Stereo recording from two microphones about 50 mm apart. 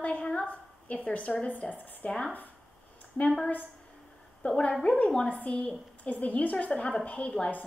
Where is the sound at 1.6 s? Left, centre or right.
Left.